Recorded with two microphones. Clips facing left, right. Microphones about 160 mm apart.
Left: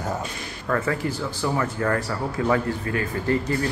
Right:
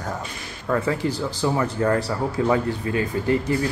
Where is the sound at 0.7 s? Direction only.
15° right (ahead or behind).